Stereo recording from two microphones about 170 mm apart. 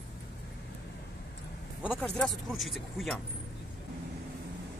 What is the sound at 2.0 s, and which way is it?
Speech, 5° left (ahead or behind).